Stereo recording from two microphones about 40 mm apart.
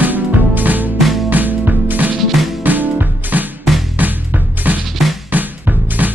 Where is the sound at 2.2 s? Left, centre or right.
Centre.